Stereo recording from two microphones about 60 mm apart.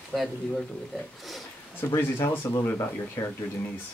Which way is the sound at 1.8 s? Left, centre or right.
Left.